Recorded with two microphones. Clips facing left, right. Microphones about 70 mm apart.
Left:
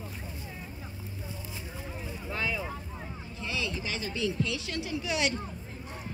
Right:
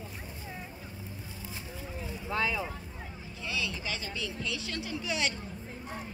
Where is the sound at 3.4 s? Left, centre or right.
Centre.